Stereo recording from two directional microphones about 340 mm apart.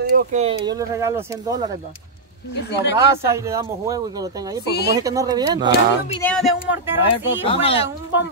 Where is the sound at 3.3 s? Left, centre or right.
Centre.